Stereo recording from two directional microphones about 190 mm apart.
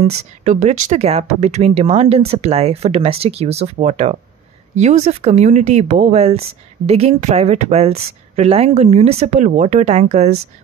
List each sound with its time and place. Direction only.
0.0 s speech: 40° right (ahead or behind)